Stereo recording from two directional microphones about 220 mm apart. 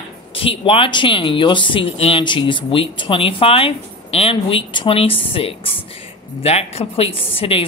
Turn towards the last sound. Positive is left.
turn(degrees=25)  # may be behind; listen again after turning